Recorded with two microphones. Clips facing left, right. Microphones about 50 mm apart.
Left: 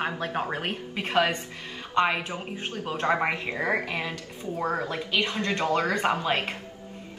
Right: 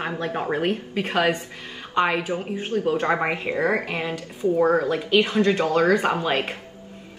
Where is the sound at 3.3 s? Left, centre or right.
Right.